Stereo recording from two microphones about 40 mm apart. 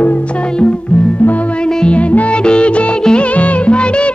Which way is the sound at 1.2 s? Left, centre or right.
Left.